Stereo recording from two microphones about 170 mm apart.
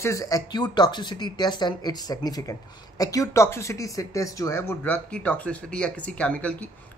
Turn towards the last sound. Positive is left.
turn(degrees=10)  # may be behind; listen again after turning